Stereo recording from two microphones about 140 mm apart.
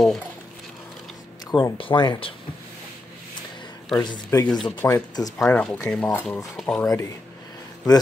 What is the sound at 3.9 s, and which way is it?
Speech, 30° left (ahead or behind).